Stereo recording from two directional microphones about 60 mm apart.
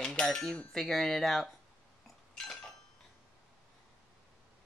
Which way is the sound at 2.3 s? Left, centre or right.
Centre.